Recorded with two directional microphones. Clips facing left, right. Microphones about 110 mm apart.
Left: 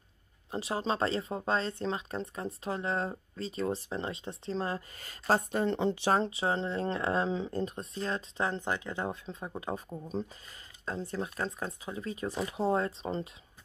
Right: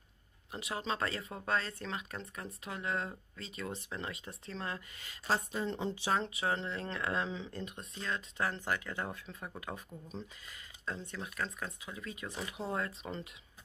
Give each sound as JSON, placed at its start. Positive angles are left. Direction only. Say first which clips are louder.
{"t": 0.5, "sound": "speech", "louder": "left 6 dB", "side_deg": 30}
{"t": 6.1, "sound": "speech", "louder": "left 5 dB", "side_deg": 30}
{"t": 9.8, "sound": "speech", "louder": "left 9 dB", "side_deg": 40}